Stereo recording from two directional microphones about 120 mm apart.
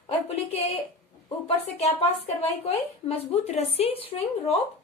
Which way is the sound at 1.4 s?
60° left (ahead or behind).